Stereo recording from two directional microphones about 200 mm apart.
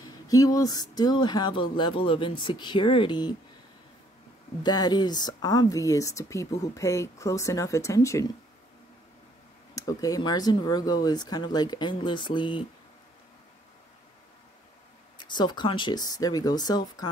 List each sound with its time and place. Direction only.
0.3 s speech: 15° left (ahead or behind)
4.6 s speech: 20° left (ahead or behind)
9.8 s speech: 15° left (ahead or behind)
15.1 s speech: 20° left (ahead or behind)